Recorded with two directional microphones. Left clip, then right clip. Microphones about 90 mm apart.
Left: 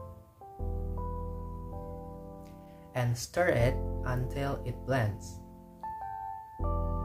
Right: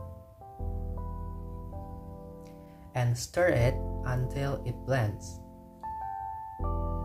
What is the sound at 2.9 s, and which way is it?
Speech, 20° left (ahead or behind).